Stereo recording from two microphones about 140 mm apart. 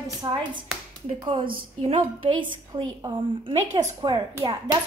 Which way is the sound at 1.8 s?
40° right (ahead or behind).